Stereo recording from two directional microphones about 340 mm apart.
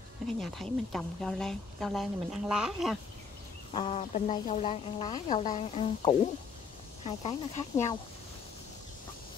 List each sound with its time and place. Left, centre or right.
0.4 s a woman's voice: centre
3.7 s speech: centre